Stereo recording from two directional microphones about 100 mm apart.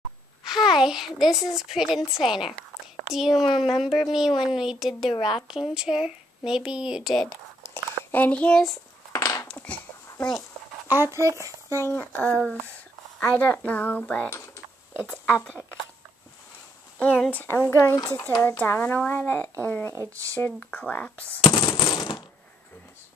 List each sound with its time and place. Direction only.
0.4 s a woman's voice: 5° right (ahead or behind)
5.1 s speech: 55° left (ahead or behind)
5.5 s speech: 5° right (ahead or behind)
7.2 s a sound: 25° left (ahead or behind); by 8.7 s 10° left (ahead or behind)
9.1 s a sound: 30° left (ahead or behind)
9.5 s a sound: 15° left (ahead or behind)
10.9 s speech: 25° right (ahead or behind)
12.0 s speech: 15° left (ahead or behind)
14.3 s typing: 25° left (ahead or behind)
17.0 s speech: 15° left (ahead or behind)
17.6 s speech: 30° left (ahead or behind)
19.9 s speech: 30° right (ahead or behind)
20.5 s speech: 10° left (ahead or behind)
21.6 s coin: 40° left (ahead or behind)